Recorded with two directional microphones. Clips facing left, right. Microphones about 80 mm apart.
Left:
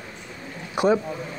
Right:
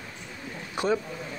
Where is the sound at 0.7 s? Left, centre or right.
Centre.